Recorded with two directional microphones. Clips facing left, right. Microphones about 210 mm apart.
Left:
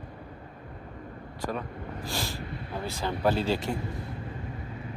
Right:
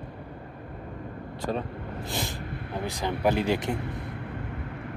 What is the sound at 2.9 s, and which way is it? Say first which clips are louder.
Speech: right 1 dB; 15° right (ahead or behind).